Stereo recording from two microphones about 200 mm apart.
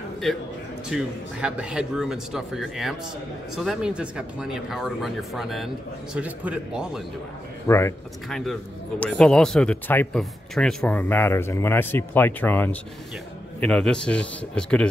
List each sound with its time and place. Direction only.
0.8 s a man's voice: 5° right (ahead or behind)
7.6 s speech: 15° left (ahead or behind)
8.3 s a man's voice: centre (ahead or behind)